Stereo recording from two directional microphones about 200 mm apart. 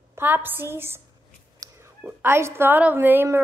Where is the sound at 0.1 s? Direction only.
10° right (ahead or behind).